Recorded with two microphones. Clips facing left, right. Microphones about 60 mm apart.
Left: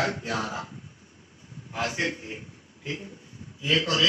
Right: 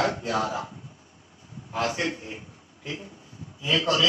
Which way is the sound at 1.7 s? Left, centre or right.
Centre.